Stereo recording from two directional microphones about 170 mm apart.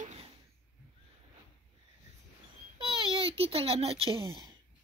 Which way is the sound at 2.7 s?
30° right (ahead or behind).